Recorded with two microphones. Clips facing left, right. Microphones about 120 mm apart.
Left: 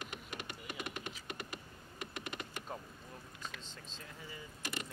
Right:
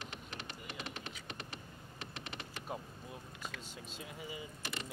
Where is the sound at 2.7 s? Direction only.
10° right (ahead or behind).